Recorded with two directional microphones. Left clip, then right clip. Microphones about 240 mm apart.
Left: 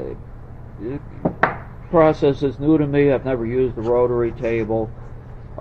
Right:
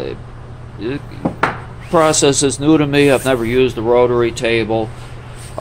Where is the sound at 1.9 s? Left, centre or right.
Centre.